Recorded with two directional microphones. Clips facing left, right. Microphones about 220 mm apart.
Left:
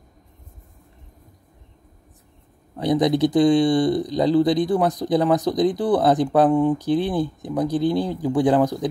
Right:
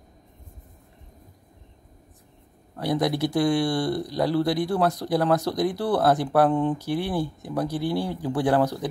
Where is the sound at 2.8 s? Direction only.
20° left (ahead or behind).